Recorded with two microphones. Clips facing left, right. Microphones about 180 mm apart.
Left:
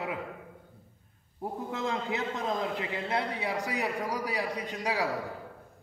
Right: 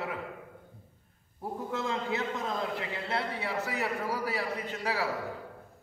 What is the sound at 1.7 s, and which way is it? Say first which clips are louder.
A man's voice: even; 20° left (ahead or behind).